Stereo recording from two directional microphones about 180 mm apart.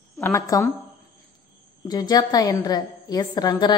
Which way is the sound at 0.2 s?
15° left (ahead or behind).